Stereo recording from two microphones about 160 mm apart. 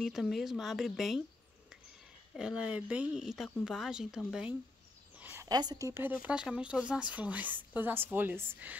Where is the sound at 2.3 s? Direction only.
5° right (ahead or behind).